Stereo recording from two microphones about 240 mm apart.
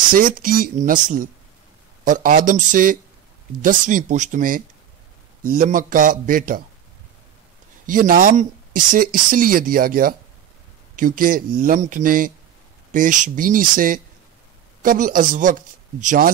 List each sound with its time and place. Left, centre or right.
0.1 s speech: right
2.0 s speech: right
7.8 s speech: right